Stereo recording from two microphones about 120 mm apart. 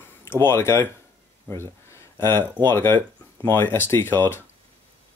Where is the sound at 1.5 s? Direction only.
20° left (ahead or behind).